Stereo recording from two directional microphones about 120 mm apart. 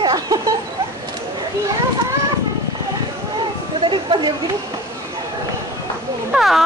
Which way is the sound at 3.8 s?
45° right (ahead or behind).